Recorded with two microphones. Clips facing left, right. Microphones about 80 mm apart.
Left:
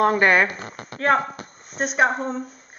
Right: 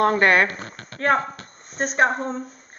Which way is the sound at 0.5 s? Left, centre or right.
Centre.